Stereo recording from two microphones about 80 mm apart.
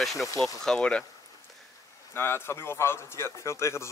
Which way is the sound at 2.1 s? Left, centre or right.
Left.